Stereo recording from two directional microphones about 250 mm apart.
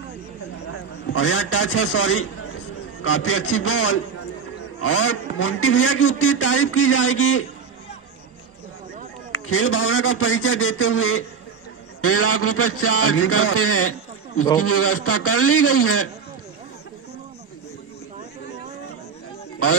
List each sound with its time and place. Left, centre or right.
1.1 s a man's voice: left
9.3 s a man's voice: left